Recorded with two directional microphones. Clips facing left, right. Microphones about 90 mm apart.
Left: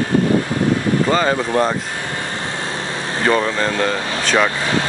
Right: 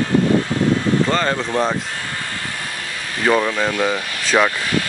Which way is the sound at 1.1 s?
5° left (ahead or behind).